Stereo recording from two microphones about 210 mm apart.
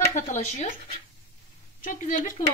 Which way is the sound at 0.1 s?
35° left (ahead or behind).